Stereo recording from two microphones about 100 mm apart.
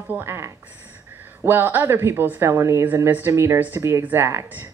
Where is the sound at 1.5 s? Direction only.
20° right (ahead or behind).